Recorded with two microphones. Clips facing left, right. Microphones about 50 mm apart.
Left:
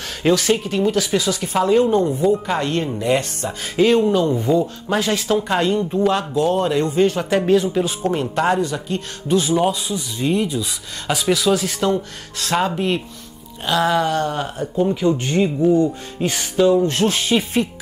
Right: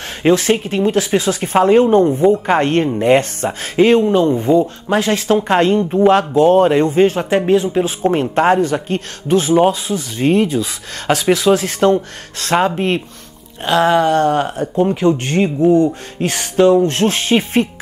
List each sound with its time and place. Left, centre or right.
0.2 s a man's voice: right
14.2 s a man's voice: right
15.0 s a man's voice: right